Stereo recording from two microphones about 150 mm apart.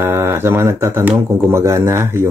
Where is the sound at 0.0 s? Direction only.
20° right (ahead or behind).